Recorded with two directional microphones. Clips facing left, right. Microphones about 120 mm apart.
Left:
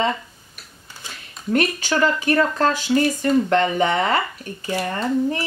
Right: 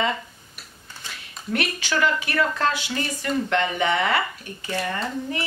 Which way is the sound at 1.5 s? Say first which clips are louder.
Left 5 dB; 40° left (ahead or behind).